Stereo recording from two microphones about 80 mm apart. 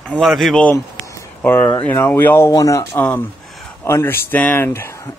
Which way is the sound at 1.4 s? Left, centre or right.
Left.